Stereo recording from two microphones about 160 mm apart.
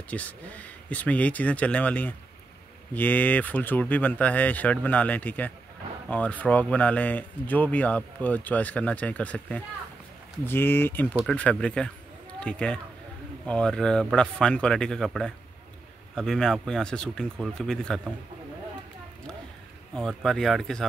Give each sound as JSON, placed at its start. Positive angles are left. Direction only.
{"t": 0.1, "sound": "speech", "side_deg": 10}
{"t": 19.9, "sound": "speech", "side_deg": 5}